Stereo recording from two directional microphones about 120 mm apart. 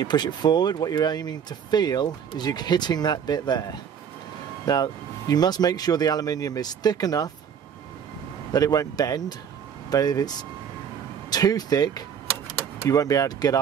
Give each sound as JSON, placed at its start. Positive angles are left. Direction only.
{"t": 0.0, "sound": "speech", "side_deg": 35}
{"t": 8.5, "sound": "speech", "side_deg": 30}